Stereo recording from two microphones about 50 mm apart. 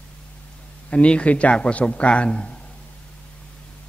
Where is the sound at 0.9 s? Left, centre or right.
Left.